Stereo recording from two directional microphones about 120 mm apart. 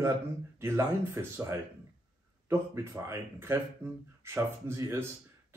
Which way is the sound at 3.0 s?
20° right (ahead or behind).